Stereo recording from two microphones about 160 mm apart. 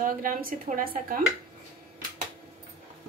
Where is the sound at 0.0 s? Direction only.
60° right (ahead or behind).